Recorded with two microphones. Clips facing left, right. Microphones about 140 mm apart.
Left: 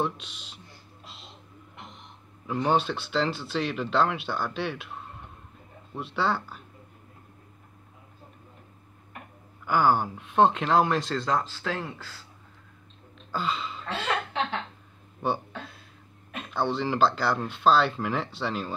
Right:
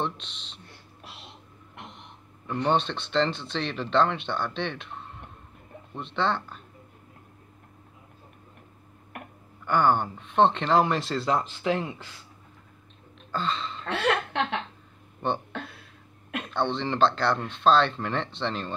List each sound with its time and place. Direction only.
0.0 s speech: 5° left (ahead or behind)
0.7 s a sound: 65° right (ahead or behind)
2.4 s speech: 5° left (ahead or behind)
9.7 s speech: 5° left (ahead or behind)
13.3 s speech: 5° left (ahead or behind)
13.8 s a woman's voice: 65° right (ahead or behind)
15.5 s cough: 65° right (ahead or behind)
16.5 s speech: 5° left (ahead or behind)